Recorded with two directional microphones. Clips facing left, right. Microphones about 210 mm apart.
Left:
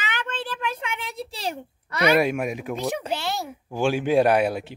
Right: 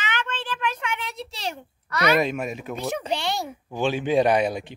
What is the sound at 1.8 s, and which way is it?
Speech, 30° left (ahead or behind).